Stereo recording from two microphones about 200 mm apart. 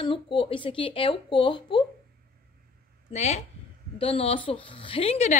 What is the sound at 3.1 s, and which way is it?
A woman's voice, 35° left (ahead or behind).